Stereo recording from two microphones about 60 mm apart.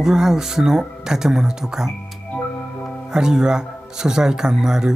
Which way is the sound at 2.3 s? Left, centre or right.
Centre.